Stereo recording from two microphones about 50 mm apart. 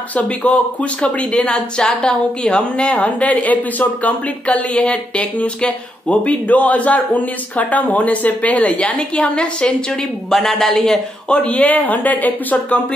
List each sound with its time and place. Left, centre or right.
0.1 s speech: left
1.0 s speech: centre
10.3 s speech: centre
11.2 s speech: left